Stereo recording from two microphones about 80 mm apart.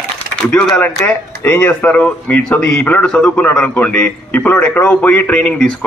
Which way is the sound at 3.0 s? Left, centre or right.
Centre.